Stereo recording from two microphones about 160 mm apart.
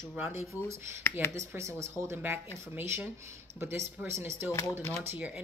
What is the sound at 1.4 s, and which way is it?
Speech, 20° right (ahead or behind).